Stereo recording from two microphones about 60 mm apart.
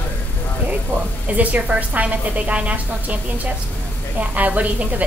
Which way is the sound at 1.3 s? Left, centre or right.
Right.